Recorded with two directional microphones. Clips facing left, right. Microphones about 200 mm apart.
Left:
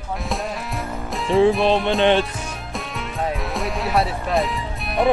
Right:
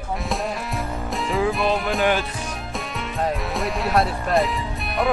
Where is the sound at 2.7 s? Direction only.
Centre (ahead or behind).